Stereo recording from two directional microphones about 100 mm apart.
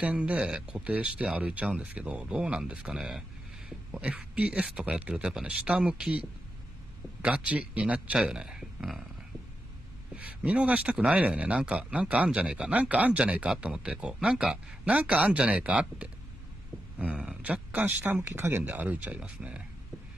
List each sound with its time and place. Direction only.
0.0 s speech: 15° right (ahead or behind)
10.1 s speech: 15° right (ahead or behind)
18.3 s speech: 25° right (ahead or behind)